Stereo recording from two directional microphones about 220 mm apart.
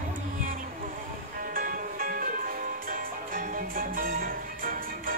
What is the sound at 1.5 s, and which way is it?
Music, 40° right (ahead or behind).